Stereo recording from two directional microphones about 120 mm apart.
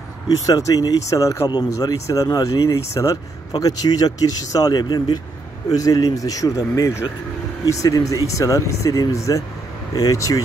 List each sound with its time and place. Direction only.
0.5 s speech: 30° left (ahead or behind)